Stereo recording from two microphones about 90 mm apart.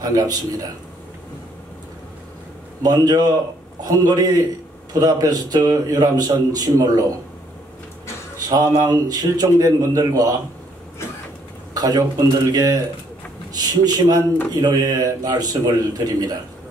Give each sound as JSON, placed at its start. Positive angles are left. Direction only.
{"t": 0.0, "sound": "a man's voice", "side_deg": -45}
{"t": 2.8, "sound": "a man's voice", "side_deg": -45}
{"t": 8.5, "sound": "a man's voice", "side_deg": -45}
{"t": 11.7, "sound": "a man's voice", "side_deg": -45}